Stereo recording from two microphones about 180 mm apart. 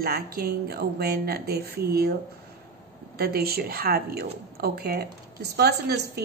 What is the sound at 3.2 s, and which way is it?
A woman's voice, 60° right (ahead or behind).